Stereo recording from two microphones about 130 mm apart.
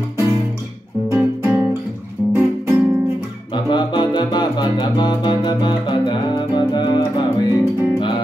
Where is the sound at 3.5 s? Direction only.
35° left (ahead or behind).